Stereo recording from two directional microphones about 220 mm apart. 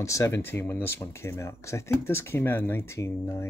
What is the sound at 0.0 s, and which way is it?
Speech, 15° left (ahead or behind).